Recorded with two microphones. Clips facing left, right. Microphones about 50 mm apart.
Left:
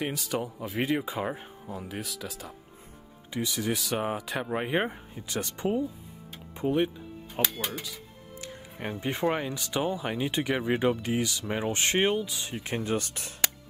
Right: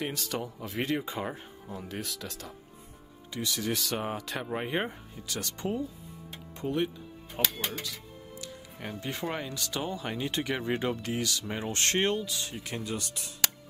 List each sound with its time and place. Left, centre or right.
0.0 s speech: centre
3.3 s speech: centre
8.4 s speech: left